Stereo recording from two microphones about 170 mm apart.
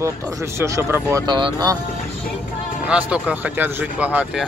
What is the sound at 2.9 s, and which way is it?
Speech, 5° right (ahead or behind).